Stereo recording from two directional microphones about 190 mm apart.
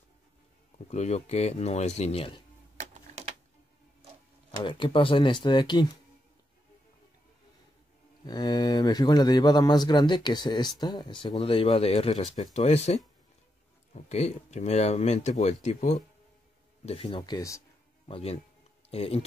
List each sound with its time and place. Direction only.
0.8 s speech: 35° left (ahead or behind)
4.5 s a man's voice: 25° left (ahead or behind)
8.3 s a man's voice: 20° left (ahead or behind)
18.0 s speech: 30° left (ahead or behind)